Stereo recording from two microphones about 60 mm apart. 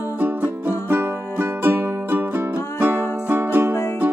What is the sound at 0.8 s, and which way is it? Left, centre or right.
Music, right.